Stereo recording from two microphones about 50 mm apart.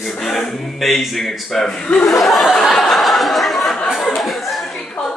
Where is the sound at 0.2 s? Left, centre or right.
Centre.